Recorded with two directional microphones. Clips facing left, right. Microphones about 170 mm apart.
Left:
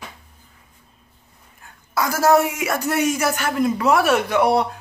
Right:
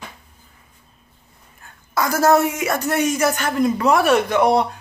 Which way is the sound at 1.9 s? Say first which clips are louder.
Right 1 dB; 5° left (ahead or behind).